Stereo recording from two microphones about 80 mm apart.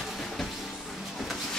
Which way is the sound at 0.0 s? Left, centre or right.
Centre.